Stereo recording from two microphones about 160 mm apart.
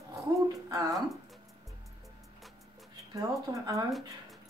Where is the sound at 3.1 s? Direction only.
20° right (ahead or behind).